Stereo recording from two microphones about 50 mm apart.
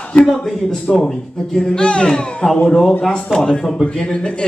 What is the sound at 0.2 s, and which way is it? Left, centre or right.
Speech, centre.